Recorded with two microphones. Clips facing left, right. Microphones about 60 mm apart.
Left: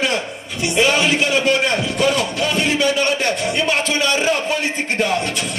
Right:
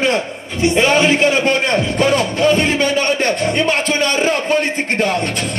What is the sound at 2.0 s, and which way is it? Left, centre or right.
Music, right.